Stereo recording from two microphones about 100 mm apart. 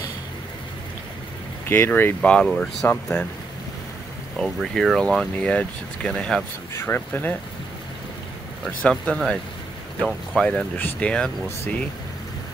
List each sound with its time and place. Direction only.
1.7 s speech: 20° left (ahead or behind)
2.3 s speech: 10° left (ahead or behind)
4.4 s speech: centre (ahead or behind)
6.7 s speech: 20° left (ahead or behind)
8.6 s speech: 10° left (ahead or behind)